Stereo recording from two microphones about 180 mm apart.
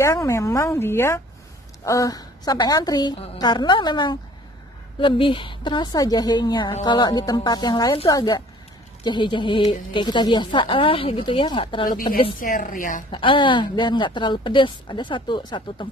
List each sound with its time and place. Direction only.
0.0 s a woman's voice: 15° left (ahead or behind)
12.4 s a woman's voice: 50° left (ahead or behind)
13.1 s a woman's voice: 25° left (ahead or behind)